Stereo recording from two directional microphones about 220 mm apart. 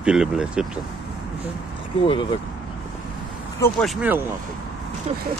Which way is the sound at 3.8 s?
5° right (ahead or behind).